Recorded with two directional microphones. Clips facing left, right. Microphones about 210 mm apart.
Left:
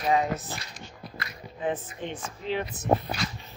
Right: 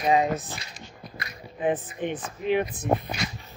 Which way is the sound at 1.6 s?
15° right (ahead or behind).